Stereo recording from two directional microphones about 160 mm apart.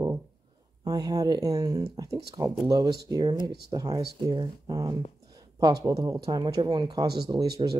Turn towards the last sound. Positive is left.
turn(degrees=-30)  # may be behind; listen again after turning